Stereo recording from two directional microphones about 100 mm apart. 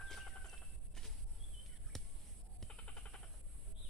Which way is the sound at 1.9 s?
5° left (ahead or behind).